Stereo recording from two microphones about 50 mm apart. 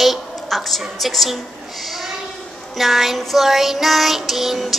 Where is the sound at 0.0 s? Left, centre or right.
Centre.